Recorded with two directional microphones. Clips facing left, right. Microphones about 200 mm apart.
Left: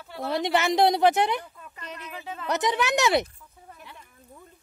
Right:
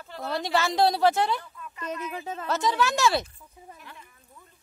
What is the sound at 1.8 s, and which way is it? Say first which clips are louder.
Speech: right 6 dB; 45° right (ahead or behind).